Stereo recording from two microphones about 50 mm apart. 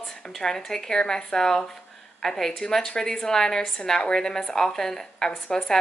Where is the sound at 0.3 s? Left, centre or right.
Centre.